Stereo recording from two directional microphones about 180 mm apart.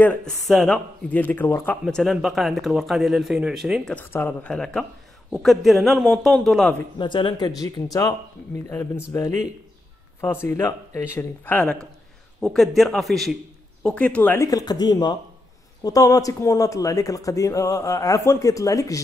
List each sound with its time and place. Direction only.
0.0 s speech: 5° left (ahead or behind)
3.9 s speech: 10° left (ahead or behind)
7.0 s speech: 25° left (ahead or behind)